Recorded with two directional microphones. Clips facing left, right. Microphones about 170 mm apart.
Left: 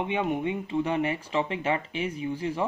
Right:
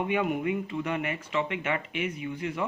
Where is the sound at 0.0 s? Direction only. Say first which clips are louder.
Even; 25° left (ahead or behind).